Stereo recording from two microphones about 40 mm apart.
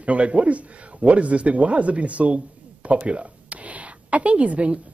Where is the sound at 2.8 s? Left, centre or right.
Right.